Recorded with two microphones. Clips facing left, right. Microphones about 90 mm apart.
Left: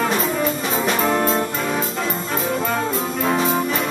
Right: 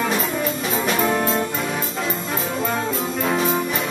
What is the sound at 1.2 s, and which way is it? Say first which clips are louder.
Brass instrument: left 2 dB; 35° left (ahead or behind).